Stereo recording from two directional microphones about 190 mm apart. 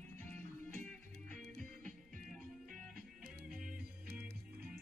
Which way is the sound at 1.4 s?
5° left (ahead or behind).